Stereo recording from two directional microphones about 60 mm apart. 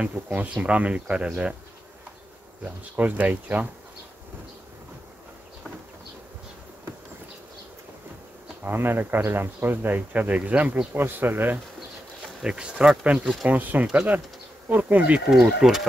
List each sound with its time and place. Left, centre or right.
0.0 s speech: right
2.6 s speech: right
8.6 s a man's voice: right
12.4 s speech: centre
13.0 s speech: right